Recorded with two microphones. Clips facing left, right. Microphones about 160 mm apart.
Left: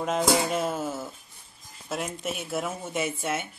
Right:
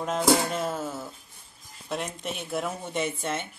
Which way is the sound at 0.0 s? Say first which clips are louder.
Right 1 dB; 5° left (ahead or behind).